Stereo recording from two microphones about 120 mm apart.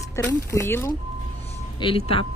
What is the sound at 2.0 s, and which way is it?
Speech, 55° left (ahead or behind).